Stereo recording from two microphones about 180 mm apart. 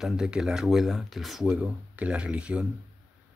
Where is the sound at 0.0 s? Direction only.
5° right (ahead or behind).